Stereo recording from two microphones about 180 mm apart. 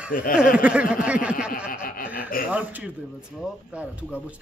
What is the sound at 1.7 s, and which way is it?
Speech, 55° left (ahead or behind).